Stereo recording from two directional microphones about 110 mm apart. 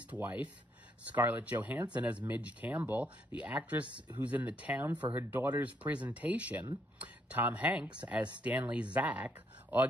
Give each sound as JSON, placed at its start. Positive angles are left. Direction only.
{"t": 0.1, "sound": "speech", "side_deg": -15}